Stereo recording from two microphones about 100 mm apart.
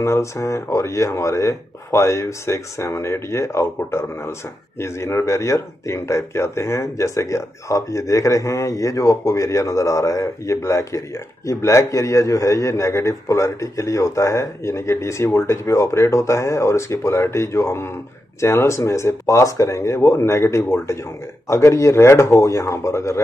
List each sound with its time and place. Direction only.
0.0 s speech: 30° left (ahead or behind)